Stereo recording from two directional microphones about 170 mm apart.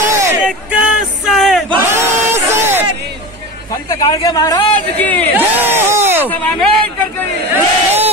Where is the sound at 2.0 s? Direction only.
15° right (ahead or behind).